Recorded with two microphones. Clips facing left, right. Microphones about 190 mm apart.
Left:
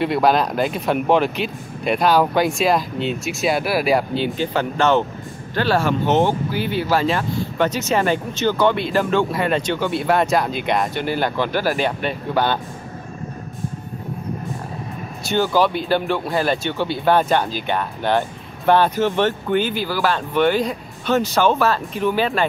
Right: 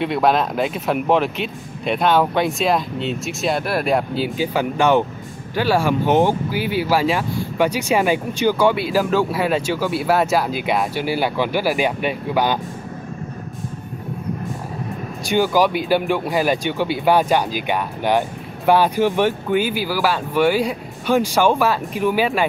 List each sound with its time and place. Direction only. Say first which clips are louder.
0.0 s speech: left 1 dB; centre (ahead or behind)
15.2 s speech: right 1 dB; 10° right (ahead or behind)